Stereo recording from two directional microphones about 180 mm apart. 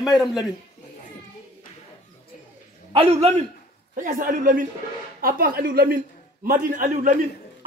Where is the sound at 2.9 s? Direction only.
35° right (ahead or behind).